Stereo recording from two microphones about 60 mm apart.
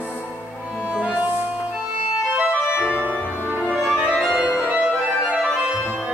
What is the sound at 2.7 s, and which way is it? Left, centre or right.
Organ, left.